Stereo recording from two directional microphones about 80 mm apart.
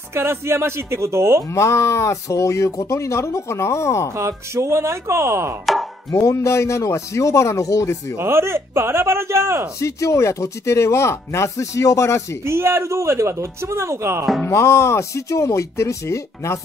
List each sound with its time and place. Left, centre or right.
0.1 s speech: right
1.5 s speech: left
4.2 s speech: right
6.1 s speech: left
8.2 s speech: right
9.8 s speech: left
12.4 s speech: right
14.5 s speech: left